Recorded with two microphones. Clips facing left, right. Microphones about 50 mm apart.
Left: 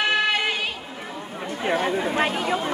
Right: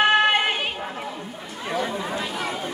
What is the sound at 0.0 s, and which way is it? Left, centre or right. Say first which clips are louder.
Chatter: right 4 dB; right.